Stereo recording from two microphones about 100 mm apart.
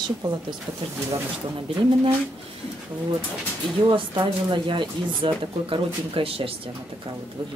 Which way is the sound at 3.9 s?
55° right (ahead or behind).